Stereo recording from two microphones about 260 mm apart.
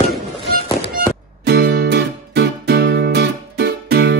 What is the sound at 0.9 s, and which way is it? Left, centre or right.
Music, right.